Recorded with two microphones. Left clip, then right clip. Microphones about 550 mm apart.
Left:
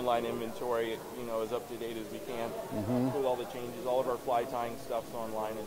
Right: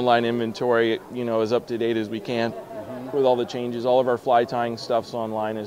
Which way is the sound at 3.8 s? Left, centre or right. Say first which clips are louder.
Right 11 dB; right.